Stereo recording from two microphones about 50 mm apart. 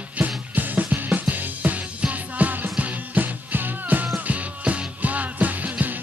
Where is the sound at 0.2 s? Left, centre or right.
Right.